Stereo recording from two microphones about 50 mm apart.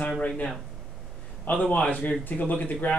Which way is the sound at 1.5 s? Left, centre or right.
Left.